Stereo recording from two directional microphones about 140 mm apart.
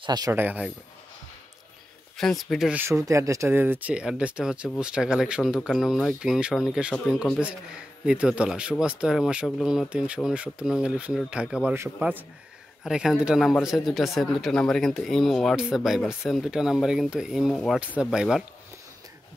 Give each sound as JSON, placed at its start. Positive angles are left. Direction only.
{"t": 0.0, "sound": "speech", "side_deg": -30}
{"t": 0.3, "sound": "speech", "side_deg": -15}
{"t": 2.1, "sound": "speech", "side_deg": 0}
{"t": 2.7, "sound": "speech", "side_deg": -15}